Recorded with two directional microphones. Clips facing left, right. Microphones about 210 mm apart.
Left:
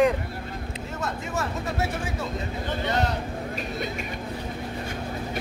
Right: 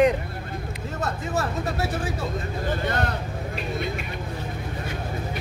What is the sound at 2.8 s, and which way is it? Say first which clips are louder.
Speech: left 3 dB; 55° right (ahead or behind).